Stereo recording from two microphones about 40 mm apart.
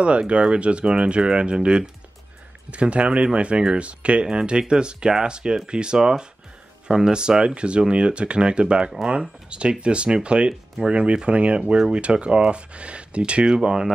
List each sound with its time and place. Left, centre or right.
0.0 s speech: right
13.5 s speech: centre